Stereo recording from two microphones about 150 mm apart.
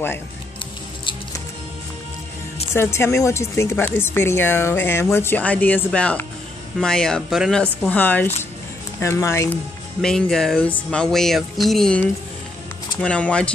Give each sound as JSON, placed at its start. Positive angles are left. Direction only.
{"t": 2.7, "sound": "speech", "side_deg": 15}
{"t": 7.9, "sound": "speech", "side_deg": 10}
{"t": 10.0, "sound": "speech", "side_deg": 5}